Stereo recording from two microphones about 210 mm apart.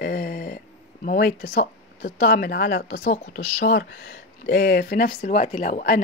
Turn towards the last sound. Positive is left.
turn(degrees=40)  # may be behind; listen again after turning